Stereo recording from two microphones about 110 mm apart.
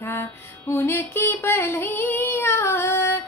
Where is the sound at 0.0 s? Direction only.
20° left (ahead or behind).